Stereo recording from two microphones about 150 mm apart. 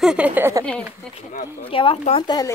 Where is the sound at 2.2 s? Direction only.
25° left (ahead or behind).